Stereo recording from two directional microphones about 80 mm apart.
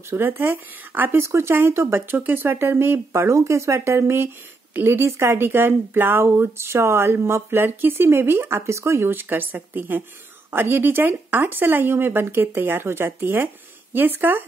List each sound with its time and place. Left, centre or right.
0.1 s speech: right